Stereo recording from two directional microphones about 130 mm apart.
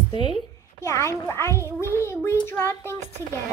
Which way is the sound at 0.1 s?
40° left (ahead or behind).